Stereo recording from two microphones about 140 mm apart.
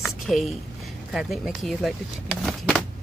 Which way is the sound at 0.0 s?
Centre (ahead or behind).